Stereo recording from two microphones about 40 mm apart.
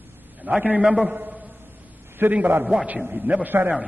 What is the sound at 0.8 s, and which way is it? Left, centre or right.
Speech, centre.